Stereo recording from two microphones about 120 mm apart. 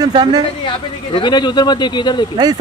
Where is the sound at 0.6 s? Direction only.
40° left (ahead or behind).